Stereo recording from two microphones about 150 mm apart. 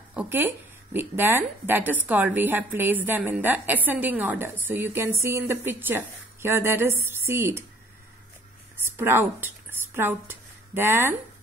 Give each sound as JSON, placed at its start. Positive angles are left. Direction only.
{"t": 0.1, "sound": "speech", "side_deg": -10}
{"t": 8.7, "sound": "a woman's voice", "side_deg": -15}